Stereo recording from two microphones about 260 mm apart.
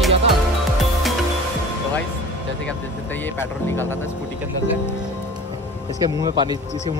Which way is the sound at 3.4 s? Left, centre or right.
Centre.